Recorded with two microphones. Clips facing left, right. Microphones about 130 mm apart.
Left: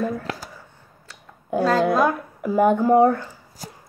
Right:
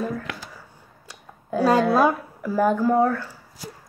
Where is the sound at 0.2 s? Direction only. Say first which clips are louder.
Left 3 dB; 35° left (ahead or behind).